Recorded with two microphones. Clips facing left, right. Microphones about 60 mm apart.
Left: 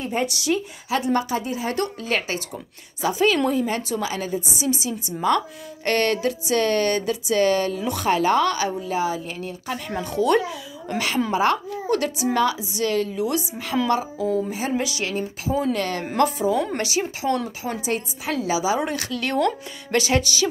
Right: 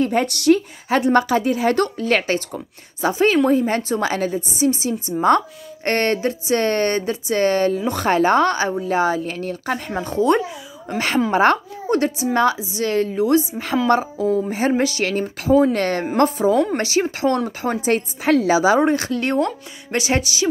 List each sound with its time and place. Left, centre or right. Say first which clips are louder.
0.0 s a woman's voice: right 7 dB; right
2.0 s speech: right 6 dB; right
9.9 s speech: right 2 dB; right
11.3 s speech: right 5 dB; right
11.9 s speech: right 3 dB; right
18.8 s speech: right 8 dB; right